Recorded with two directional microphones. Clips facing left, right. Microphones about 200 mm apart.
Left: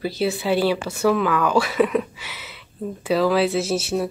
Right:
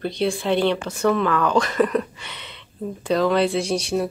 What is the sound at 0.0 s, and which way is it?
Speech, 5° left (ahead or behind).